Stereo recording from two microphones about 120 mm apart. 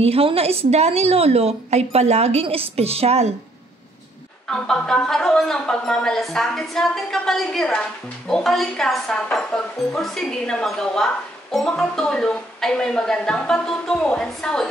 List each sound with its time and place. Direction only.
0.0 s a woman's voice: 55° right (ahead or behind)
4.5 s speech: 5° left (ahead or behind)